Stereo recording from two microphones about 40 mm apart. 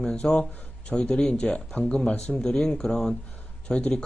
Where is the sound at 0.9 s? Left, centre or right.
Centre.